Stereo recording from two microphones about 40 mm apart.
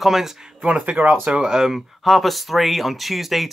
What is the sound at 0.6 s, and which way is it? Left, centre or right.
Speech, right.